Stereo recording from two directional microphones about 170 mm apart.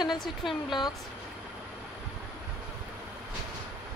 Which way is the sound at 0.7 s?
25° left (ahead or behind).